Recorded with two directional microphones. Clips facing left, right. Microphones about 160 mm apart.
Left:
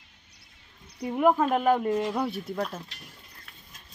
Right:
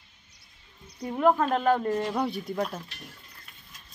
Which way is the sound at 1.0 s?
10° left (ahead or behind).